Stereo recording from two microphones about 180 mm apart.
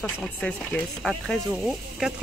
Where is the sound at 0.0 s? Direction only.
5° left (ahead or behind).